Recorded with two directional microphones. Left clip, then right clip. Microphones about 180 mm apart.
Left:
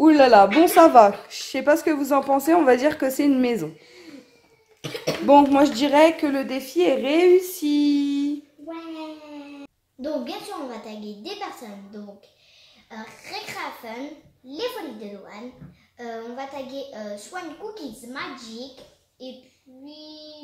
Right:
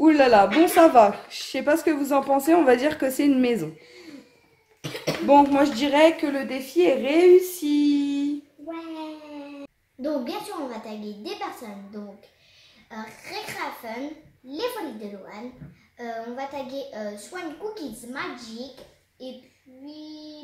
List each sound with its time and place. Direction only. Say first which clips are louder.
0.0 s a woman's voice: left 3 dB; 35° left (ahead or behind); by 3.7 s 10° left (ahead or behind)
4.8 s a sound: left 2 dB; centre (ahead or behind)
5.2 s a woman's voice: left 2 dB; 35° left (ahead or behind)
9.6 s a child's voice: right 2 dB; 5° right (ahead or behind)
12.9 s a child's voice: even; 5° right (ahead or behind)
16.9 s a child's voice: even; 5° right (ahead or behind)